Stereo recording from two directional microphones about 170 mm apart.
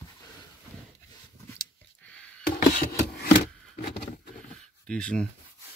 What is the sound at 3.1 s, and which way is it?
Chopping, 70° left (ahead or behind).